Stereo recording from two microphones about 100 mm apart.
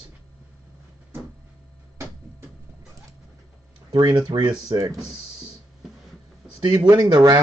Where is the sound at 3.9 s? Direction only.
45° right (ahead or behind).